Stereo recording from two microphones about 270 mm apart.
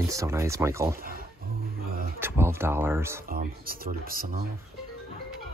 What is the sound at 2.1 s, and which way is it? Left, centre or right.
Speech, centre.